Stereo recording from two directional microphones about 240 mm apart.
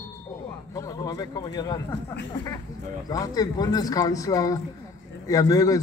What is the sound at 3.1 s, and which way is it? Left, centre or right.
A man's voice, centre.